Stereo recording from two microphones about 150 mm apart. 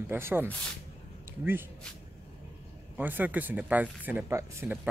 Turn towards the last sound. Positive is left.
turn(degrees=-15)  # may be behind; listen again after turning